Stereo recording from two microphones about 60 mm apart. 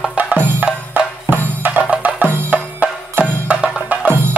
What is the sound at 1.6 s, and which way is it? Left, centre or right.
Music, right.